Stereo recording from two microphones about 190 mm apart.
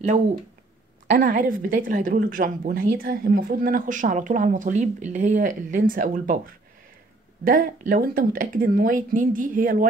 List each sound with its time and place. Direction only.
1.1 s a woman's voice: 40° right (ahead or behind)